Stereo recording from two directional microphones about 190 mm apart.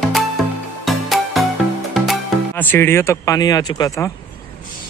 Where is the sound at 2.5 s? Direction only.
10° left (ahead or behind).